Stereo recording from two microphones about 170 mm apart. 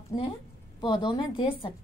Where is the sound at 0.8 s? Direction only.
25° left (ahead or behind).